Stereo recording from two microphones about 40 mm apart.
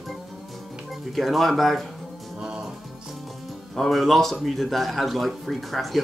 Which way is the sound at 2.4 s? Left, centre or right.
Centre.